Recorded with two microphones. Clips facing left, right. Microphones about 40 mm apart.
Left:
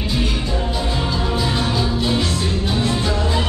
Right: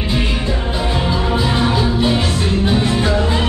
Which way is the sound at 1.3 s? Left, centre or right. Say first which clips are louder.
Right 5 dB; right.